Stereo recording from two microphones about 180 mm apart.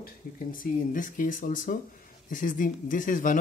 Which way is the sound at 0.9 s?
50° left (ahead or behind).